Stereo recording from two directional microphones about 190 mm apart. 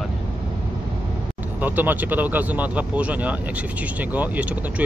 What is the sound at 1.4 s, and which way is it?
Speech, 10° right (ahead or behind).